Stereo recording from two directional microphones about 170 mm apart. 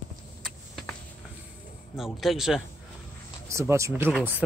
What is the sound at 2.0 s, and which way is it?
Speech, centre (ahead or behind).